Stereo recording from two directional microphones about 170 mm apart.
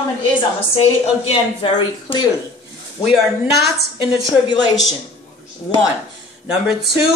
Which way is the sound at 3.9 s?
25° left (ahead or behind).